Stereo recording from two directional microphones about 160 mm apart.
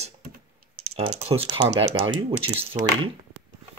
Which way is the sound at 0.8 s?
40° right (ahead or behind).